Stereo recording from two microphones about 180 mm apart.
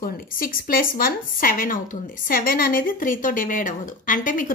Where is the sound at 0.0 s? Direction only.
50° left (ahead or behind).